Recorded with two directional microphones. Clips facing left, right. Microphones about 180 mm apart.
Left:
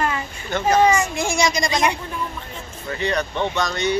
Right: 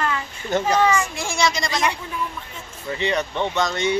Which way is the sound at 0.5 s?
40° right (ahead or behind).